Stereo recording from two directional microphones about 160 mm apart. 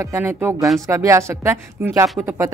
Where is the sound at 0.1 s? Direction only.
15° right (ahead or behind).